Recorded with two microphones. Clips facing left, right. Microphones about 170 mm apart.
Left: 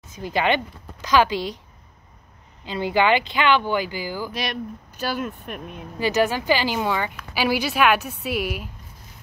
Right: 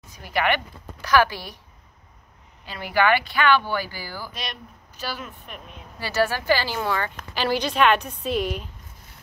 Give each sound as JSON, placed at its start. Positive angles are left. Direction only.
{"t": 0.1, "sound": "a woman's voice", "side_deg": 20}
{"t": 2.6, "sound": "speech", "side_deg": 20}
{"t": 4.3, "sound": "speech", "side_deg": 65}
{"t": 5.9, "sound": "a woman's voice", "side_deg": 15}